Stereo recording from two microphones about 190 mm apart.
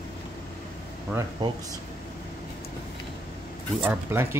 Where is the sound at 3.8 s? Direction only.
10° right (ahead or behind).